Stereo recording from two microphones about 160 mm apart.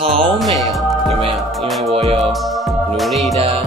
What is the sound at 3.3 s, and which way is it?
Speech, 40° right (ahead or behind).